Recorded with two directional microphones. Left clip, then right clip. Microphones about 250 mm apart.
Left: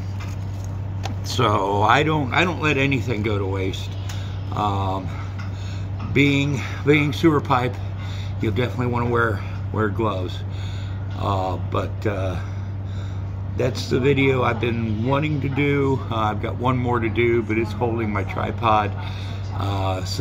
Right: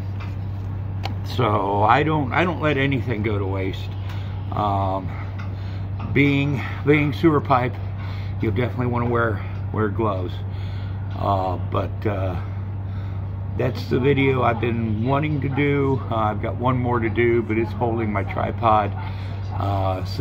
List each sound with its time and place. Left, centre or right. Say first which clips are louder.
1.3 s speech: left 1 dB; centre
6.1 s speech: left 1 dB; centre
13.6 s speech: left 1 dB; centre